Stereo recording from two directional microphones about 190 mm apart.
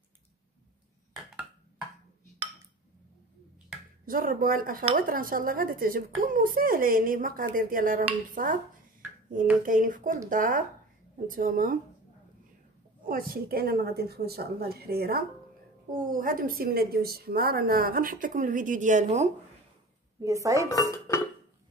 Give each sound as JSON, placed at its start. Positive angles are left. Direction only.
{"t": 4.0, "sound": "a woman's voice", "side_deg": -50}
{"t": 9.7, "sound": "a woman's voice", "side_deg": -45}
{"t": 13.1, "sound": "a woman's voice", "side_deg": -50}
{"t": 20.2, "sound": "speech", "side_deg": -15}
{"t": 20.6, "sound": "dishes", "side_deg": 15}